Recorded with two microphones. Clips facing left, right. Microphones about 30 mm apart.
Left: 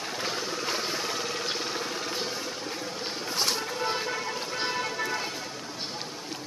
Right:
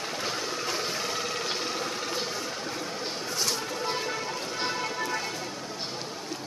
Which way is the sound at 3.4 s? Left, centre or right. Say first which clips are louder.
Left 2 dB; left.